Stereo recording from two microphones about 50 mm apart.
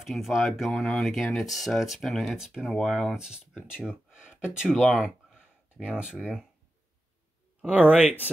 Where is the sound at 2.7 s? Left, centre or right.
Centre.